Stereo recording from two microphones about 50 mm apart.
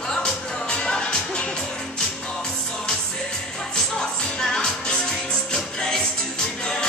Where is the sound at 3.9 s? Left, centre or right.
Centre.